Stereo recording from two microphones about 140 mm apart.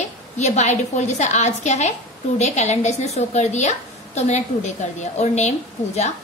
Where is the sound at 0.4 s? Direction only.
55° left (ahead or behind).